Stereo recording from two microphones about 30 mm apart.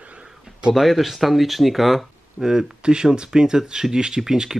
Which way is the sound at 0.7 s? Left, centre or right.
Centre.